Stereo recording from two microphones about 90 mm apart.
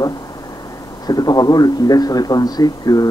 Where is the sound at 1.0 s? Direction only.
45° left (ahead or behind).